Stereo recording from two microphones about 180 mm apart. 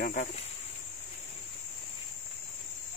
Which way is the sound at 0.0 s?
45° left (ahead or behind).